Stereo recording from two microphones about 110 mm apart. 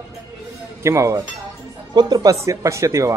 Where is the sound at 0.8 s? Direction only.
25° right (ahead or behind).